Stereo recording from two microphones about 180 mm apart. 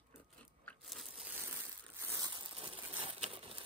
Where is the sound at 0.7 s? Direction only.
Centre (ahead or behind); by 2.5 s 20° right (ahead or behind).